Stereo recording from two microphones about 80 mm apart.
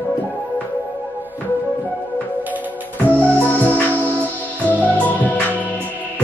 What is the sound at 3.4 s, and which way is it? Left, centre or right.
Music, left.